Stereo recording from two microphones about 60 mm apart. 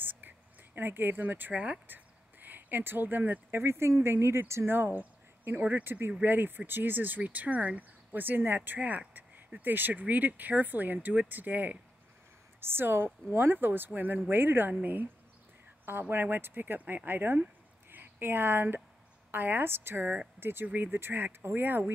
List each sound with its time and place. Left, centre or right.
0.0 s whispering: right
0.7 s speech: right
1.5 s speech: centre
2.4 s speech: right
3.5 s speech: right
4.7 s speech: right
12.5 s speech: right
15.8 s speech: right